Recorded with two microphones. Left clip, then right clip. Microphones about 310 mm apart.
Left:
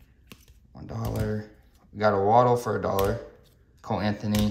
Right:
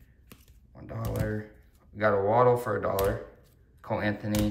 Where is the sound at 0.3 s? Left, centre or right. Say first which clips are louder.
Left 5 dB; centre.